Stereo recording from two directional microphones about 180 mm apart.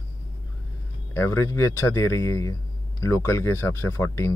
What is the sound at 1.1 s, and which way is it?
Speech, 15° left (ahead or behind).